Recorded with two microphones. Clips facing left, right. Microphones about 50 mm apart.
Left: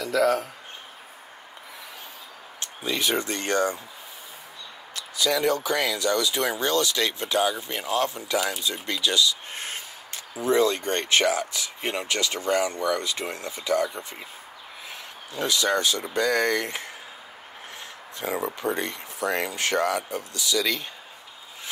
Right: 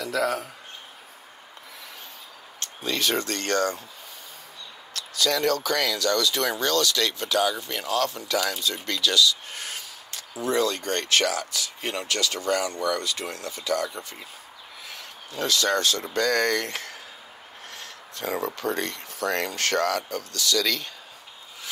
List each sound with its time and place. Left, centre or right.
0.0 s speech: centre
2.6 s speech: centre
4.9 s speech: centre
9.5 s speech: left
17.7 s a sound: centre
18.4 s speech: centre